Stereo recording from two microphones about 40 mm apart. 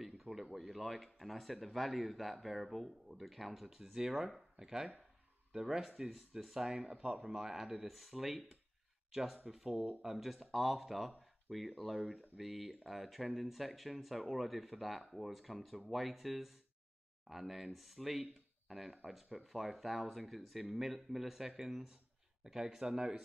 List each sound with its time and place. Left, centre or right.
0.0 s a sound: centre
0.6 s speech: centre
5.8 s speech: centre
6.7 s speech: centre
11.8 s speech: centre